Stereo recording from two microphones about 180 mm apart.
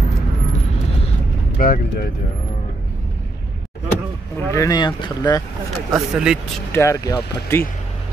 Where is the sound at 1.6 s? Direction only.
50° left (ahead or behind).